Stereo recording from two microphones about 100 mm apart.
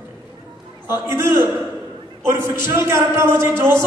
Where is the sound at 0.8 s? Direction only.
25° right (ahead or behind).